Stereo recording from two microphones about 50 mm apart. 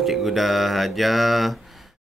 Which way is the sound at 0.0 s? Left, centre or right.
Centre.